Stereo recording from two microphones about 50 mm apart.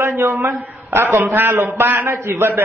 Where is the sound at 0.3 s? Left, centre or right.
Right.